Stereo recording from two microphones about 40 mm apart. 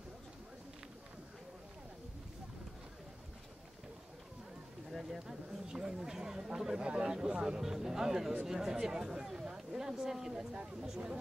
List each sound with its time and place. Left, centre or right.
4.9 s speech: centre
10.5 s speech: right